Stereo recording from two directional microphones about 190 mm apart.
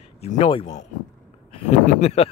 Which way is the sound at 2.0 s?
35° left (ahead or behind).